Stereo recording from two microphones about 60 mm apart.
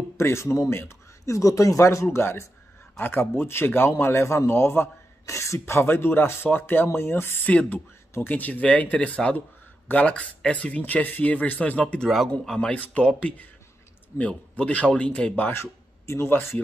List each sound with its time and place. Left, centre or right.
0.2 s speech: left
2.0 s a man's voice: left
5.2 s speech: left
5.8 s speech: left
8.3 s speech: left
15.5 s speech: left